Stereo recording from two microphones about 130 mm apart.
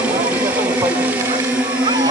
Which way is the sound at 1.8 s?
35° right (ahead or behind).